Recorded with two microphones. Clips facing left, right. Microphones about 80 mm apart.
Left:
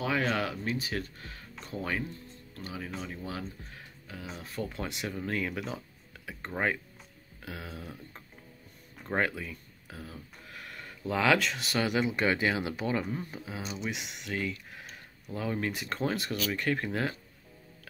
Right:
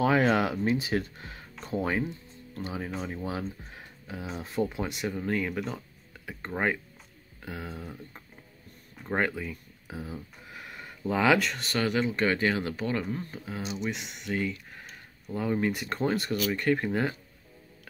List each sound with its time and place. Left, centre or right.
0.0 s speech: right
3.0 s speech: right
3.7 s music: right
4.4 s speech: centre
4.7 s speech: centre